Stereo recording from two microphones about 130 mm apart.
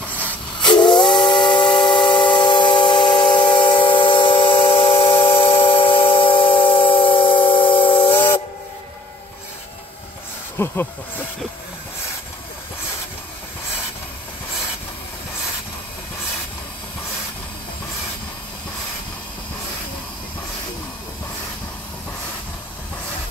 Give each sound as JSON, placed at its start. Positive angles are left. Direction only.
{"t": 0.6, "sound": "steam whistle", "side_deg": 35}
{"t": 3.2, "sound": "a sound", "side_deg": 35}
{"t": 10.6, "sound": "speech", "side_deg": 15}